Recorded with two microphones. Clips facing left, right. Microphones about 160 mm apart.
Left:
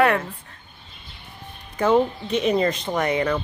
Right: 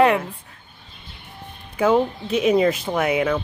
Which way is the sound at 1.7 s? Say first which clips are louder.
Right 1 dB; 5° right (ahead or behind).